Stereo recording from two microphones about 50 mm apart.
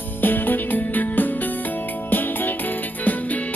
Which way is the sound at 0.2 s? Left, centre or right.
Left.